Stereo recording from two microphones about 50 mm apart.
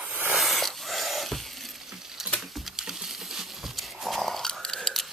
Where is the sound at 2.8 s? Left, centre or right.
Centre.